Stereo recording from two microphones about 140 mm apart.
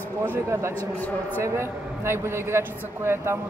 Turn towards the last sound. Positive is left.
turn(degrees=-15)  # may be behind; listen again after turning